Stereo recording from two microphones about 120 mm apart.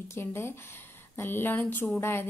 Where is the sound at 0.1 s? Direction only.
20° left (ahead or behind).